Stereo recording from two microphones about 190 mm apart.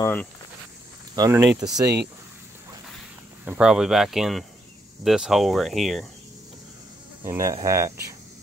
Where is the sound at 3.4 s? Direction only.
5° right (ahead or behind).